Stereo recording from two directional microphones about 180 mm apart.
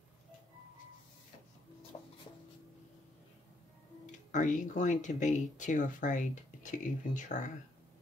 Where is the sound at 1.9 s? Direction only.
35° left (ahead or behind).